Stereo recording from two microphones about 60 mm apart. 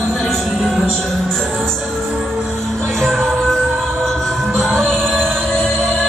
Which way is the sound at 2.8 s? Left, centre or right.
Centre.